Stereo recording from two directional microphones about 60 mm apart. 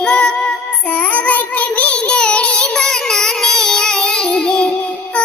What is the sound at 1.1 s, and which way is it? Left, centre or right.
Child singing, left.